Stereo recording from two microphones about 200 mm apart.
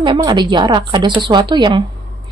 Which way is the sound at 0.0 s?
25° right (ahead or behind).